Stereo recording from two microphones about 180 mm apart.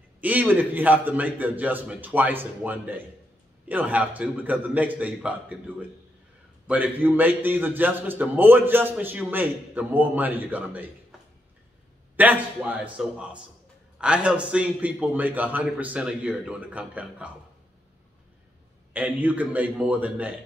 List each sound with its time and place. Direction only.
0.2 s a man's voice: 10° right (ahead or behind)
12.2 s a man's voice: 10° right (ahead or behind)
18.9 s a man's voice: 10° right (ahead or behind)